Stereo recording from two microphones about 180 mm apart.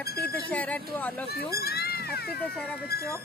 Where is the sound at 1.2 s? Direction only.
60° left (ahead or behind).